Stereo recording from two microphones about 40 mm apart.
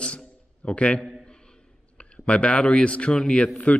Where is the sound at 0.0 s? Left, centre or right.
Left.